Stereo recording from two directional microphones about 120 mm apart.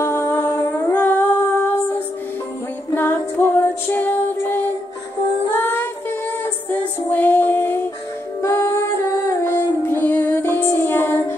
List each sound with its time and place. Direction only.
0.0 s humming: 20° left (ahead or behind)
2.9 s music: 15° left (ahead or behind)
7.1 s music: 15° left (ahead or behind)
9.3 s child singing: 20° left (ahead or behind)